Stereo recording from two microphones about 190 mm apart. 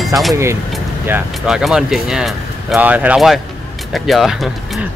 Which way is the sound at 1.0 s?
10° right (ahead or behind).